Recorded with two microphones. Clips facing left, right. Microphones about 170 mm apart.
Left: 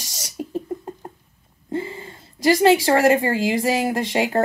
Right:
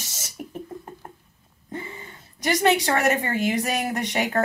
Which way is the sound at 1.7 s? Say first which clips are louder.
Left 8 dB; 25° left (ahead or behind).